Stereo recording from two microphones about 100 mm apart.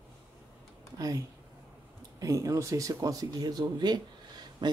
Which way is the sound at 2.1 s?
35° right (ahead or behind).